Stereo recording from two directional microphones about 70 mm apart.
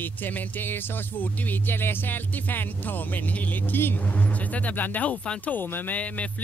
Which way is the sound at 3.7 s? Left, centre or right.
Left.